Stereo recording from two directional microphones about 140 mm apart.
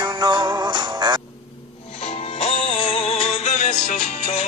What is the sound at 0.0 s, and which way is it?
Music, 30° right (ahead or behind).